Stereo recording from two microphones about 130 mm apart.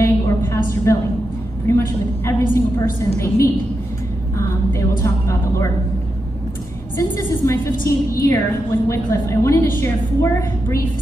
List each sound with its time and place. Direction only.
0.0 s a sound: 20° left (ahead or behind)
0.9 s a woman's voice: 20° left (ahead or behind)
7.0 s a woman's voice: 20° left (ahead or behind)